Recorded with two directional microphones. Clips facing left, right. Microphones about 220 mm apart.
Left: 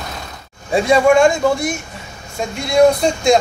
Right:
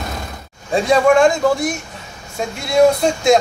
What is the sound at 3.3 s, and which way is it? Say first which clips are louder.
Speech: even; 5° right (ahead or behind).